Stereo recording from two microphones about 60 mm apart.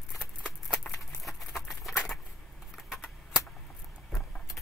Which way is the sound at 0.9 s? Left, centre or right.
Left.